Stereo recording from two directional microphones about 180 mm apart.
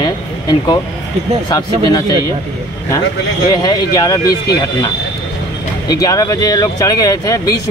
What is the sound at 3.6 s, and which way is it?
Speech, 20° left (ahead or behind).